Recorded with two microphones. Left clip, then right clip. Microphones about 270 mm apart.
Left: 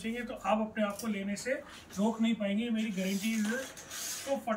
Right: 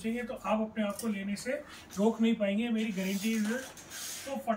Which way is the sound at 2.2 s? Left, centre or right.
Centre.